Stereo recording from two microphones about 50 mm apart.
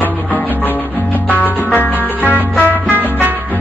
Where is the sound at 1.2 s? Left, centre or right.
Left.